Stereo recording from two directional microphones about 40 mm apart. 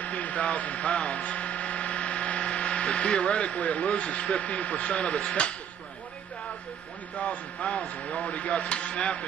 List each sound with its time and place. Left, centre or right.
0.0 s speech: left
7.2 s a man's voice: left